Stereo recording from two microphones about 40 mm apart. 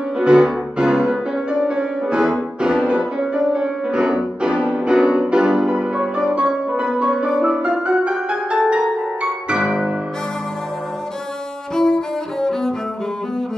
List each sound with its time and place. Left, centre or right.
0.2 s music: right
9.6 s music: centre
11.7 s cello: centre